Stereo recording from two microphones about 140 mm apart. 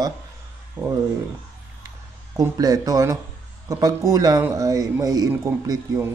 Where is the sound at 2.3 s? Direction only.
25° right (ahead or behind).